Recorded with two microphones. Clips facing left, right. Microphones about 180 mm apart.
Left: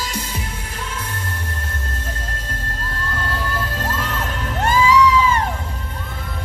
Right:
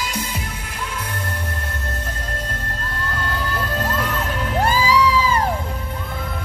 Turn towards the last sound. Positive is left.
turn(degrees=-35)  # may be behind; listen again after turning